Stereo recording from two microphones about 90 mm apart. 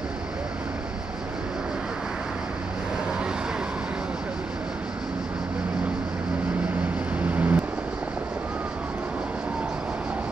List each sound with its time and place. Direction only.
7.2 s vehicle: 15° right (ahead or behind)